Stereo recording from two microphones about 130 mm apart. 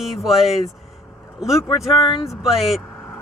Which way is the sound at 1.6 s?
30° left (ahead or behind).